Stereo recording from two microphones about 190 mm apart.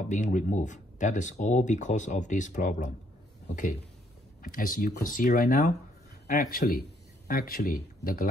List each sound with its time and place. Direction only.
0.1 s a man's voice: 40° left (ahead or behind)